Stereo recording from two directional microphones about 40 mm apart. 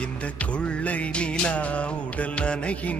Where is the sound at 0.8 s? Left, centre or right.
Left.